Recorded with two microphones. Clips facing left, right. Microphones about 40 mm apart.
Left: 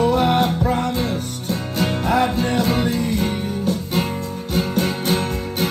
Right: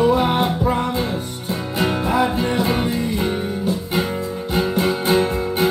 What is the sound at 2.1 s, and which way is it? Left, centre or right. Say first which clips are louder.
Music: left 1 dB; right.